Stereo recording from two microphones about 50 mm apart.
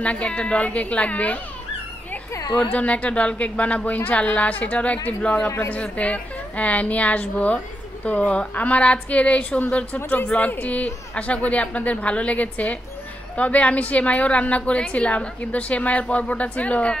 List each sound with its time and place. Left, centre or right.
0.0 s a woman's voice: left
2.6 s a woman's voice: left